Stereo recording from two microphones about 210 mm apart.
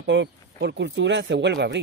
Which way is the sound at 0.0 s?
55° right (ahead or behind).